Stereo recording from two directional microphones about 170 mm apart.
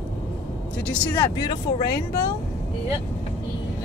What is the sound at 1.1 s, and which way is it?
Speech, 25° left (ahead or behind).